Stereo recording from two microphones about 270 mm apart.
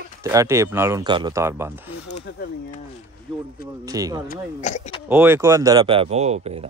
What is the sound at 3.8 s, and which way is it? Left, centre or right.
Speech, centre.